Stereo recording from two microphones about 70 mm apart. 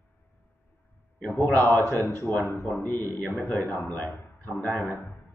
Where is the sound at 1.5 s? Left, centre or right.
Left.